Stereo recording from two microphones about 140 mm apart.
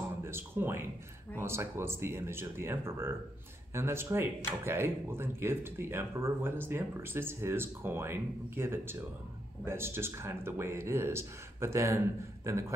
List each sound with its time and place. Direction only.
0.2 s speech: 15° right (ahead or behind)